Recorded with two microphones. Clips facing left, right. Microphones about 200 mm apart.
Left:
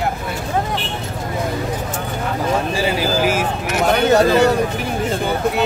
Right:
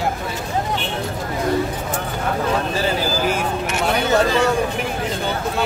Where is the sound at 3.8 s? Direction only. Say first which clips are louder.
Left 5 dB; 40° left (ahead or behind).